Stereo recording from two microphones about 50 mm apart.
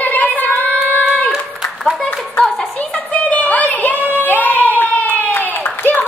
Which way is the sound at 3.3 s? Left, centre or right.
Left.